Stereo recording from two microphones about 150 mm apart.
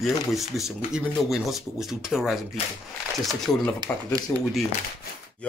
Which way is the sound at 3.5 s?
5° left (ahead or behind).